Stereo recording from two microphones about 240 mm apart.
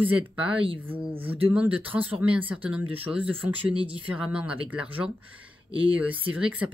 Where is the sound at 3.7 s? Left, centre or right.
Right.